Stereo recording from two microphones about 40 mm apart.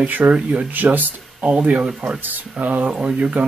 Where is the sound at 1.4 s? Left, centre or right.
Right.